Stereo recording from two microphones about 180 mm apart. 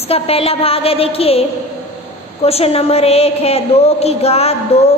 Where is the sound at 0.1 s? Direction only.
35° left (ahead or behind).